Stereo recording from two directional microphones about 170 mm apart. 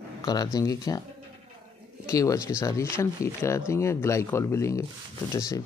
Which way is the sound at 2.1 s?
20° left (ahead or behind).